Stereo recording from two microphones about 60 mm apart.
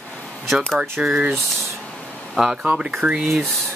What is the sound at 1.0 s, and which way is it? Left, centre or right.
Speech, centre.